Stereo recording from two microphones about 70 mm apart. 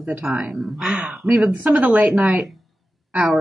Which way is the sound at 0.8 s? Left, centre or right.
Centre.